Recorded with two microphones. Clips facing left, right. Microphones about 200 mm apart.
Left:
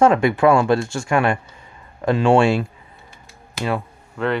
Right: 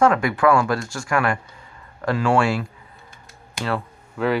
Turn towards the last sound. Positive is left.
turn(degrees=0)  # may be behind; listen again after turning